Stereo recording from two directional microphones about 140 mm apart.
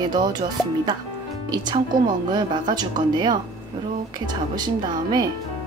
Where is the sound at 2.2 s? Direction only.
30° right (ahead or behind).